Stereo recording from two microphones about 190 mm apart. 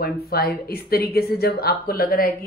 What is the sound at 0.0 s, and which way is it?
Speech, 55° left (ahead or behind).